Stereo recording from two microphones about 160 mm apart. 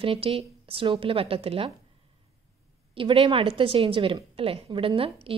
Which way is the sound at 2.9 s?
35° right (ahead or behind).